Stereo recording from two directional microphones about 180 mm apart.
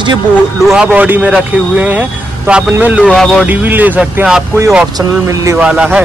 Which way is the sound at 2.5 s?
10° right (ahead or behind).